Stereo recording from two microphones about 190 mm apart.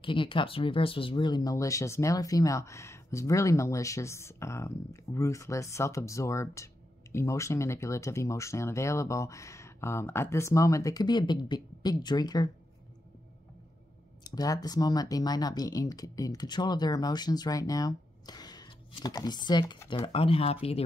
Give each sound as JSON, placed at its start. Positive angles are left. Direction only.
{"t": 0.0, "sound": "speech", "side_deg": 25}
{"t": 14.2, "sound": "speech", "side_deg": 20}